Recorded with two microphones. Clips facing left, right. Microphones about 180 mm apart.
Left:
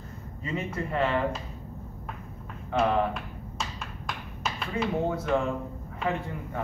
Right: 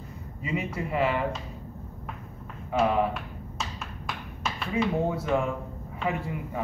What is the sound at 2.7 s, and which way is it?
Speech, 5° right (ahead or behind).